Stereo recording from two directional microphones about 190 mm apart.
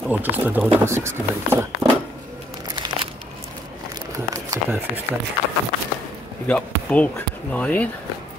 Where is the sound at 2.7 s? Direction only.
25° right (ahead or behind).